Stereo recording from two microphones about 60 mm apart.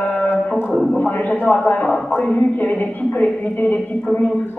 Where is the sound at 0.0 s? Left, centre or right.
Left.